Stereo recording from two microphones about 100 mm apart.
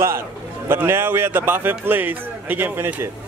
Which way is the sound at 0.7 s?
25° right (ahead or behind).